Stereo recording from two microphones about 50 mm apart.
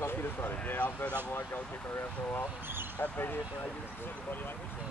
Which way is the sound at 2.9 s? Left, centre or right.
Left.